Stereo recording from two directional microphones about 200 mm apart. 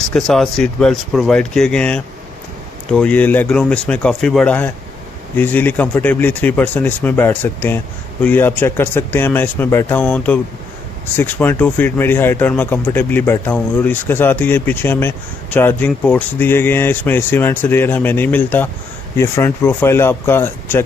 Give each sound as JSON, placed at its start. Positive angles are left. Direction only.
{"t": 0.1, "sound": "speech", "side_deg": 0}